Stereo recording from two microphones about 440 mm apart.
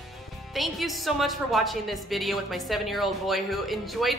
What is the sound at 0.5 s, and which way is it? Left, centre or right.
A woman's voice, centre.